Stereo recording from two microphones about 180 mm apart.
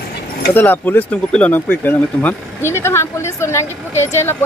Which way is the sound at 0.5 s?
10° left (ahead or behind).